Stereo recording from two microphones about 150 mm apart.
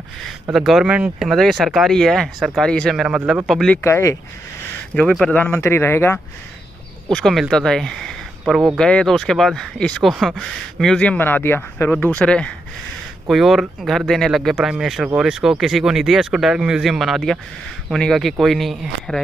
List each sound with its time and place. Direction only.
0.5 s speech: centre (ahead or behind)
3.0 s speech: 5° right (ahead or behind)
3.8 s speech: 20° left (ahead or behind)
4.9 s speech: 5° left (ahead or behind)
7.1 s speech: centre (ahead or behind)